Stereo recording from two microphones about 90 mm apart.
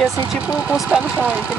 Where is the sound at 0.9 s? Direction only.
15° right (ahead or behind).